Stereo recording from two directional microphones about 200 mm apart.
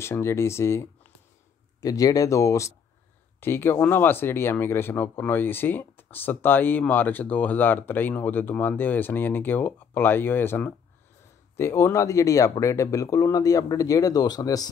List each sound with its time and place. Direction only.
0.0 s speech: 15° left (ahead or behind)